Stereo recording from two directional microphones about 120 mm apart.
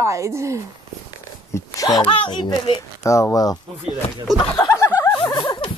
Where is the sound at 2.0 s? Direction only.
45° left (ahead or behind).